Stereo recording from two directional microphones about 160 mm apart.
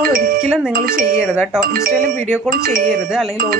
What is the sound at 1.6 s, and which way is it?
Speech, 65° right (ahead or behind).